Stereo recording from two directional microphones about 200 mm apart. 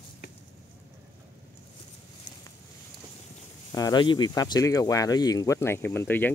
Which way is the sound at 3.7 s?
20° left (ahead or behind).